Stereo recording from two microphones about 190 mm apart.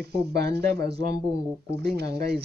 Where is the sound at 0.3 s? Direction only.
60° right (ahead or behind).